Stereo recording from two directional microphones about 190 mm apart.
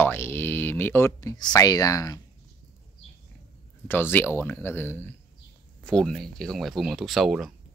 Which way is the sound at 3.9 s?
10° left (ahead or behind).